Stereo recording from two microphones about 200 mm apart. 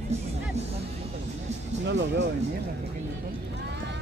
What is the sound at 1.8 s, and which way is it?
Speech, 60° right (ahead or behind).